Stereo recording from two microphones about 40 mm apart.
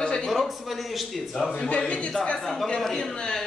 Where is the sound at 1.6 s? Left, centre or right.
Left.